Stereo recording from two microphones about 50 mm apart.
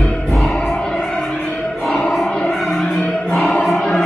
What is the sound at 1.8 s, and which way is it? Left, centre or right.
Choir, centre.